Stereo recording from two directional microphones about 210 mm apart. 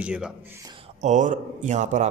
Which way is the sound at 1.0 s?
35° right (ahead or behind).